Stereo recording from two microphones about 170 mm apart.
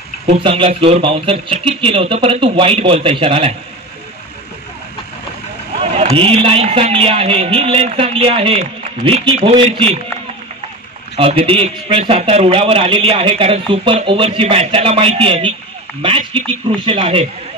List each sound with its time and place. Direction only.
0.3 s a man's voice: 30° right (ahead or behind)
5.8 s a man's voice: 35° right (ahead or behind)
11.1 s a man's voice: 35° right (ahead or behind)